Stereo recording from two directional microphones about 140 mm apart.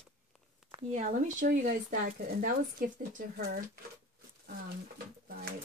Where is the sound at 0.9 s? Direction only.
70° right (ahead or behind).